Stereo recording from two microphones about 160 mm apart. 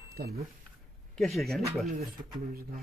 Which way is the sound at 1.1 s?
Centre (ahead or behind).